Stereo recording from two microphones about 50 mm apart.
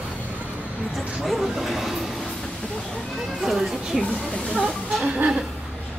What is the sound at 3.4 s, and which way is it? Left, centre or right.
Speech, centre.